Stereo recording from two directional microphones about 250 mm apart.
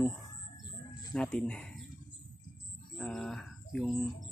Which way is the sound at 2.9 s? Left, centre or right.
Centre.